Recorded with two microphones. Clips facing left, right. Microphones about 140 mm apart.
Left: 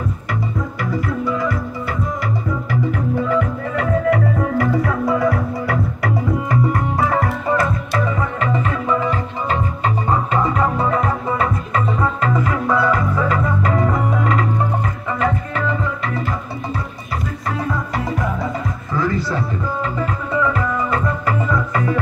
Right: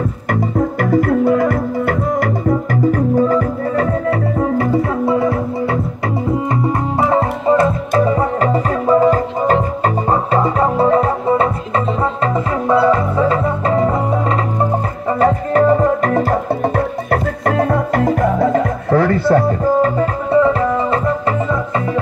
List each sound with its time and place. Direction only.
0.3 s music: 50° right (ahead or behind); by 21.9 s 25° right (ahead or behind)